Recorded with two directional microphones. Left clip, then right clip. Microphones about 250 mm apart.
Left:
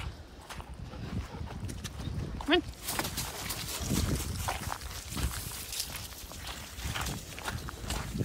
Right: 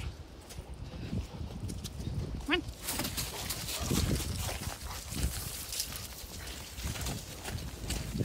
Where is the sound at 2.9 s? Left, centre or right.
Centre.